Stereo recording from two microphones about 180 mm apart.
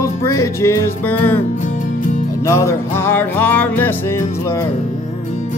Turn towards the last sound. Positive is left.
turn(degrees=10)  # may be behind; listen again after turning